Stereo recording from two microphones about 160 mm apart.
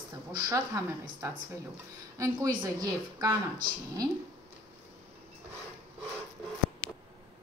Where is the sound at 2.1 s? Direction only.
20° right (ahead or behind).